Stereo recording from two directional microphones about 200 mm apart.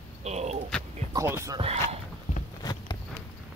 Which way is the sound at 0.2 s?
35° right (ahead or behind).